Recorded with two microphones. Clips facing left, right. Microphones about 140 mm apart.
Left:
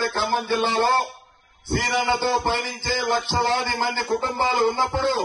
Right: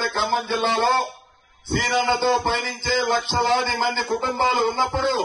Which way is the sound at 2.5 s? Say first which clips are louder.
Even; 20° left (ahead or behind).